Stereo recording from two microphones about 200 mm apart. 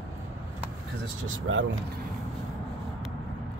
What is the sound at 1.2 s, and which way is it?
Speech, 80° right.